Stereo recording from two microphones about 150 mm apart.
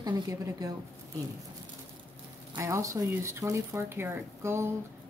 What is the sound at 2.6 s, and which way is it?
Speech, 20° right (ahead or behind).